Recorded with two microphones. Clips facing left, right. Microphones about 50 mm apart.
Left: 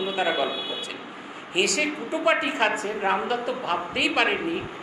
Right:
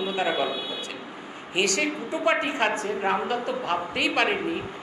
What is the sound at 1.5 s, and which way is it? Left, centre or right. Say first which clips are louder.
A man's voice: left 1 dB; centre.